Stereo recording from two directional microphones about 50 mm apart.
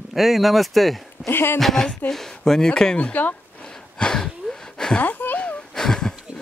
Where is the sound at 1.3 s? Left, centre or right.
Left.